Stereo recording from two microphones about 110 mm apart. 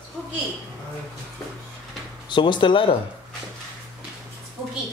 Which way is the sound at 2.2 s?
45° left (ahead or behind).